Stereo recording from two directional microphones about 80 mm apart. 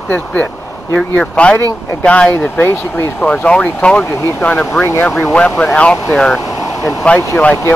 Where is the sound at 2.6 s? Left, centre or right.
Left.